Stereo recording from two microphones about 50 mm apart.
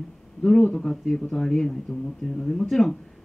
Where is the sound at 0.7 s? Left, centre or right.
Centre.